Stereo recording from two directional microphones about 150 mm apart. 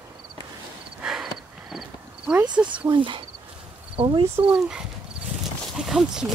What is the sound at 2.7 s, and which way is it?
Speech, 35° right (ahead or behind).